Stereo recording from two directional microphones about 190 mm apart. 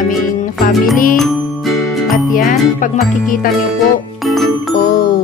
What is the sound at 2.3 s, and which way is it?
Music, 45° left (ahead or behind).